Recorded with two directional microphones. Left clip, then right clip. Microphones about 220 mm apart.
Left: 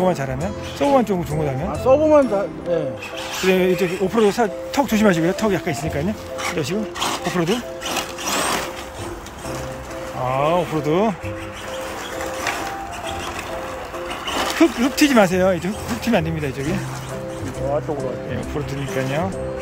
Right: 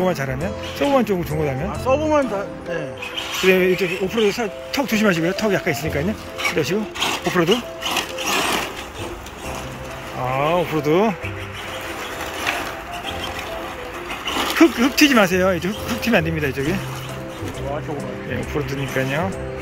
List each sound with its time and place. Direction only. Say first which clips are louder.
0.0 s speech: left 1 dB; 10° left (ahead or behind)
1.9 s speech: left 4 dB; 50° left (ahead or behind)
3.4 s speech: right 1 dB; 15° left (ahead or behind)
6.5 s music: right 2 dB; 5° left (ahead or behind)
10.2 s speech: even; 10° left (ahead or behind)
14.2 s speech: right 2 dB; 10° left (ahead or behind)